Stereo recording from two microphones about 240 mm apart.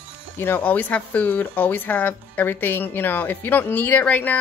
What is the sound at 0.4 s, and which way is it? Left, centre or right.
A woman's voice, centre.